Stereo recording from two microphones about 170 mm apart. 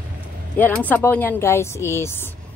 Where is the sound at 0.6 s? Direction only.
10° left (ahead or behind).